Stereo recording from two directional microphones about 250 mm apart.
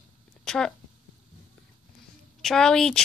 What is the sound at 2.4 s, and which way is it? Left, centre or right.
Speech, centre.